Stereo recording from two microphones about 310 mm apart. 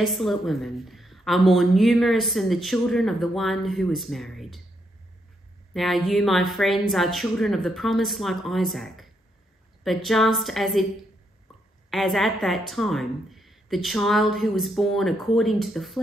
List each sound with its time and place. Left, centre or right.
0.0 s a woman's voice: centre
5.7 s a woman's voice: centre
11.9 s a woman's voice: centre